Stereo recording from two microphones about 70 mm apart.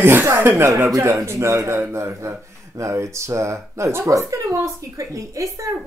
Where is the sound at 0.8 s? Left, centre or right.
Right.